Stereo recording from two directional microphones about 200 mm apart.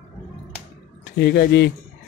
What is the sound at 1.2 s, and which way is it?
Speech, 55° left (ahead or behind).